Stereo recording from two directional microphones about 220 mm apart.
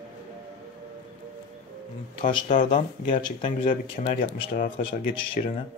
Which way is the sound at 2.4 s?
35° left (ahead or behind).